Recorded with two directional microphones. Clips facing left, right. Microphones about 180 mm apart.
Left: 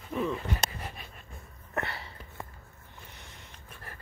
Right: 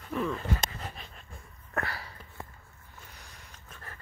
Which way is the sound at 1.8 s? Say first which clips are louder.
Even; 25° left (ahead or behind).